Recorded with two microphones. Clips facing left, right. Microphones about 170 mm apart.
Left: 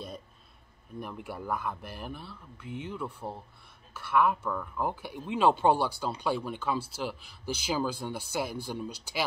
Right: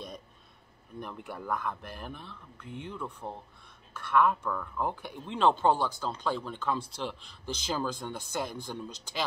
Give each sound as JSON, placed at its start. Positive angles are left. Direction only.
{"t": 0.9, "sound": "speech", "side_deg": 5}